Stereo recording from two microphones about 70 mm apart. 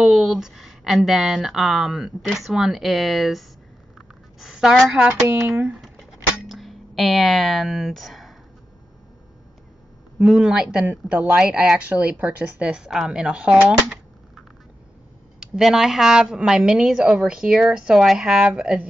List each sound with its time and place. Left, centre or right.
0.0 s a woman's voice: centre
6.5 s speech: centre
10.1 s a woman's voice: centre
15.4 s a woman's voice: centre